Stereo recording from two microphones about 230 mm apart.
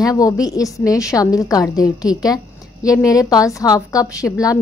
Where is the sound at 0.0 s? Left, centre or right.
Centre.